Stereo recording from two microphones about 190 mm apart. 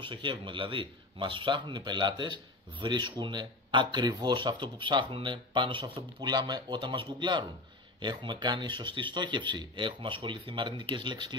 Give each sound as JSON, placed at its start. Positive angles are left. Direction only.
{"t": 0.0, "sound": "a man's voice", "side_deg": -25}